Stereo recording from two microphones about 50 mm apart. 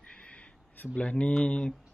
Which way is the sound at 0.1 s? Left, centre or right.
Left.